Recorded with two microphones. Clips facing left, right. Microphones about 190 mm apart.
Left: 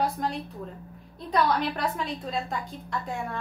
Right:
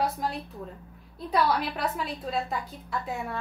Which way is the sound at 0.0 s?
5° right (ahead or behind).